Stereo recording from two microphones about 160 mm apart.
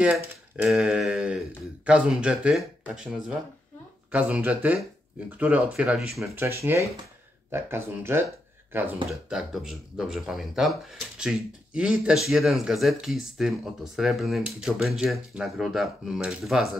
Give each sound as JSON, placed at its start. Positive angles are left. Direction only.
{"t": 0.0, "sound": "speech", "side_deg": -5}
{"t": 6.4, "sound": "speech", "side_deg": -15}
{"t": 9.3, "sound": "speech", "side_deg": 0}